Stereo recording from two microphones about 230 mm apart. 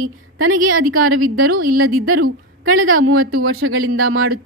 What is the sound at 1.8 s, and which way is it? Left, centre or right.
A woman's voice, right.